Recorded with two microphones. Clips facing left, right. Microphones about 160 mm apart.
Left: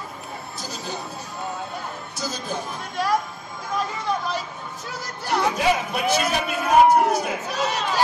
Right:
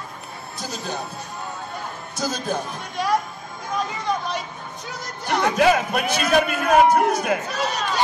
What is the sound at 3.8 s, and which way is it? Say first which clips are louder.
Speech: right 1 dB; centre (ahead or behind).